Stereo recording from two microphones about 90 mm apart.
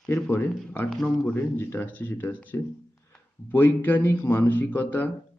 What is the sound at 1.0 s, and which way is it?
A man's voice, 20° left (ahead or behind).